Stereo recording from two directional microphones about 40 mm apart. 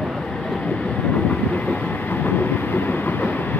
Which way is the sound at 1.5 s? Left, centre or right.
Left.